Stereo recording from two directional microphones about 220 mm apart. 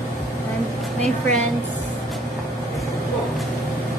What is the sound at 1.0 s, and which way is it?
Speech, 30° right (ahead or behind).